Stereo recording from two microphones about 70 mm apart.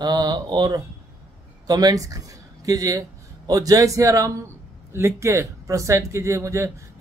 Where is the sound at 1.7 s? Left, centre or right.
Right.